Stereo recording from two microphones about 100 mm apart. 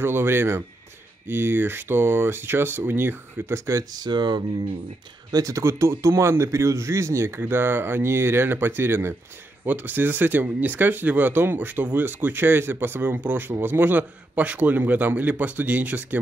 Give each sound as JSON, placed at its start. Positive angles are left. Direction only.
{"t": 0.0, "sound": "speech", "side_deg": -25}
{"t": 3.9, "sound": "speech", "side_deg": -45}
{"t": 5.3, "sound": "speech", "side_deg": -35}